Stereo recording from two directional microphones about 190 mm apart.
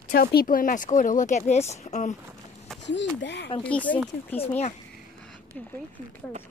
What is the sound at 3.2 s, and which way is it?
Speech, 65° left (ahead or behind).